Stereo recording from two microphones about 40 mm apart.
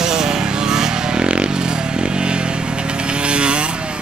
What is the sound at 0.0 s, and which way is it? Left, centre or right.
Vehicle, centre.